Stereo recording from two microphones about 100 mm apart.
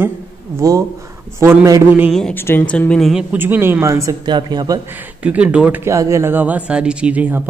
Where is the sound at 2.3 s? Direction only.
20° left (ahead or behind).